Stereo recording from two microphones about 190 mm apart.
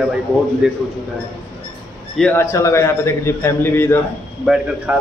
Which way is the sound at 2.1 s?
10° left (ahead or behind).